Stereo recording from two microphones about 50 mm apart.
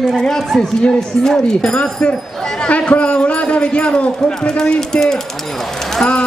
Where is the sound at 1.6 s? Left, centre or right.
Left.